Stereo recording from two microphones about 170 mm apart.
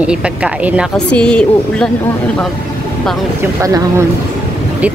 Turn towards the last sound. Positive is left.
turn(degrees=-20)  # may be behind; listen again after turning